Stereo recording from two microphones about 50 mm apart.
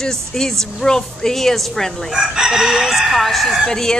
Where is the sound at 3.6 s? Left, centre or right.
Centre.